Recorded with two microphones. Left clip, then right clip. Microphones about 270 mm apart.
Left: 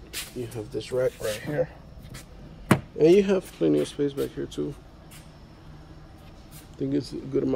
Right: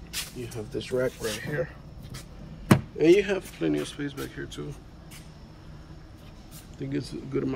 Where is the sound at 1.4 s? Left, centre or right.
Centre.